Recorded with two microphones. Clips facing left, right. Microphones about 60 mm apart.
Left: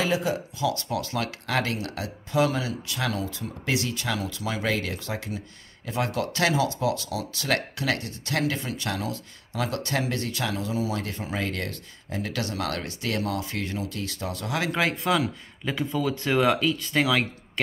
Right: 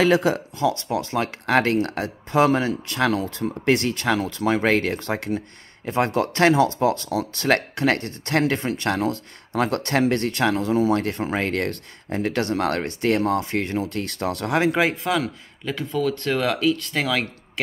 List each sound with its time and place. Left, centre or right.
0.0 s speech: right
0.6 s speech: right
14.5 s speech: right
15.0 s speech: centre